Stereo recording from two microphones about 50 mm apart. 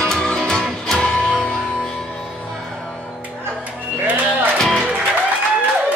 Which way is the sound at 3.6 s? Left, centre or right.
Right.